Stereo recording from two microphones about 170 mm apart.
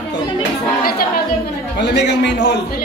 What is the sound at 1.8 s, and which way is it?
Speech, 90° left.